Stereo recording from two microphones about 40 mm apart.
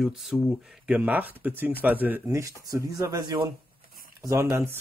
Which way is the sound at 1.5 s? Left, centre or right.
Right.